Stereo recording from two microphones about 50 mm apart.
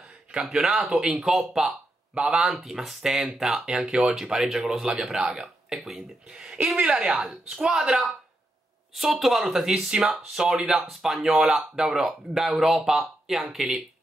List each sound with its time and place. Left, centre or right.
0.3 s speech: centre
2.1 s speech: centre
2.5 s speech: centre
5.3 s a sound: centre
5.8 s speech: centre
6.8 s speech: right
7.1 s speech: centre